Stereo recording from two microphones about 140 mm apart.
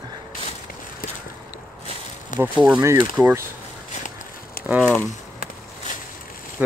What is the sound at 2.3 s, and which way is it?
Speech, 65° left (ahead or behind).